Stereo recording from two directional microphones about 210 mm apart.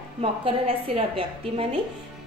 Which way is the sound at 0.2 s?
25° right (ahead or behind).